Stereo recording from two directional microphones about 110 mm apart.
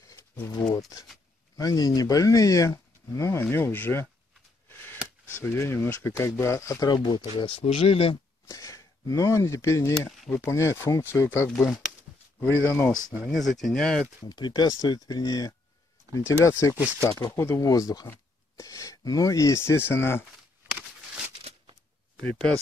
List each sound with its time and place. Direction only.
0.5 s speech: 40° left (ahead or behind)
3.2 s speech: 20° left (ahead or behind); by 8.2 s 60° left (ahead or behind)
8.5 s speech: 30° left (ahead or behind)
10.0 s speech: centre (ahead or behind)
10.4 s speech: 25° left (ahead or behind)
11.6 s speech: centre (ahead or behind)
12.4 s speech: 20° left (ahead or behind)
13.3 s speech: centre (ahead or behind)
14.2 s speech: 40° left (ahead or behind); by 20.2 s 20° left (ahead or behind)
22.2 s speech: 10° left (ahead or behind)